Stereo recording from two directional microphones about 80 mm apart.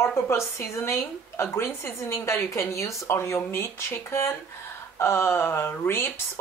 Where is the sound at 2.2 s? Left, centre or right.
Left.